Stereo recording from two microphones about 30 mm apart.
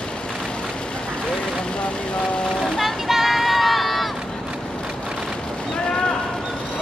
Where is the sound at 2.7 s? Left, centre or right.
Centre.